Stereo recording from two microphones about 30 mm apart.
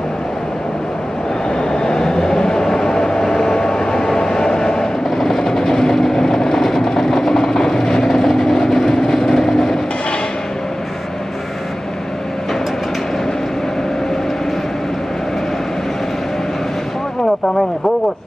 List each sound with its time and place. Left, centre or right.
1.5 s vehicle: left
2.0 s train: left
4.1 s vehicle: centre